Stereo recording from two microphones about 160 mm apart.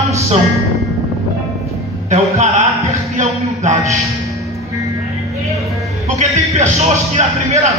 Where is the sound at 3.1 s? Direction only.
50° right (ahead or behind).